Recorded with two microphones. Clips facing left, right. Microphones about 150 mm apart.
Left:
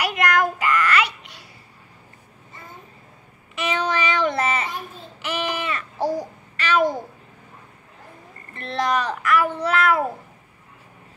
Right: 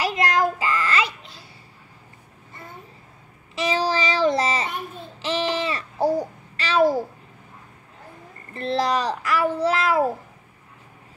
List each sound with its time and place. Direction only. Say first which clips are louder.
0.0 s child singing: even; 25° right (ahead or behind)
3.5 s child singing: right 1 dB; 35° right (ahead or behind)
5.2 s babbling: right 3 dB; 30° right (ahead or behind)
8.5 s a child's voice: right 1 dB; 30° right (ahead or behind)